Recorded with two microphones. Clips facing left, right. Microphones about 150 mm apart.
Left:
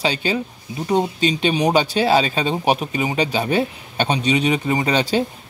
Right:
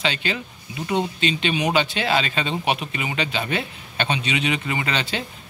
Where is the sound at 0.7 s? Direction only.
40° left (ahead or behind).